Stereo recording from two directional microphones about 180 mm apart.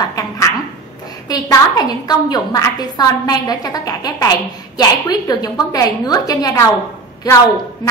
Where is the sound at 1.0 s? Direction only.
20° left (ahead or behind).